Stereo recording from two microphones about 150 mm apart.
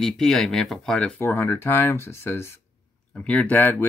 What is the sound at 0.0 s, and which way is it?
Speech, 5° left (ahead or behind).